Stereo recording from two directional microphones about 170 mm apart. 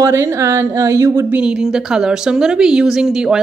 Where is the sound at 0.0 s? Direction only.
15° right (ahead or behind).